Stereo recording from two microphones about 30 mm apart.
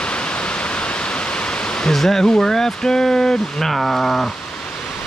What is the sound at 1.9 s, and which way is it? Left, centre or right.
Speech, centre.